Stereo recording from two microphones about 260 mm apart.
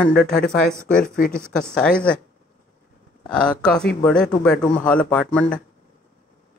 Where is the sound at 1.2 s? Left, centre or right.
Left.